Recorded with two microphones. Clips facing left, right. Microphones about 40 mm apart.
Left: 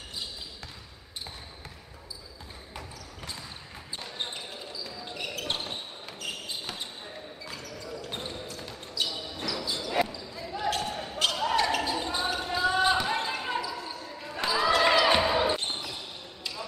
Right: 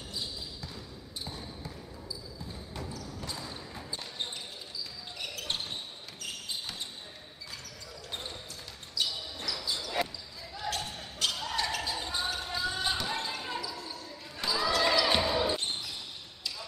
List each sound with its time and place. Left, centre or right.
5.1 s basketball bounce: left
9.0 s basketball bounce: left